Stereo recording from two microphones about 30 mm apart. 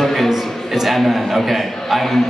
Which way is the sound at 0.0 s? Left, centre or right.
Centre.